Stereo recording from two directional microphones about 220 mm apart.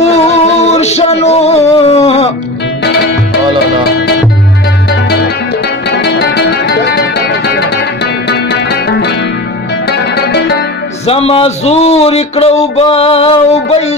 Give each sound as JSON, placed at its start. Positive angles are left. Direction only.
{"t": 0.0, "sound": "music", "side_deg": 30}
{"t": 2.8, "sound": "music", "side_deg": 50}
{"t": 5.9, "sound": "music", "side_deg": 50}
{"t": 11.1, "sound": "speech", "side_deg": 25}